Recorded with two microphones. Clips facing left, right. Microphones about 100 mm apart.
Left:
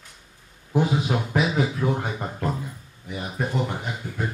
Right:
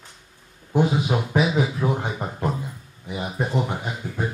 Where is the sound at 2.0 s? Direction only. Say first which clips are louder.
Right 2 dB; 15° right (ahead or behind).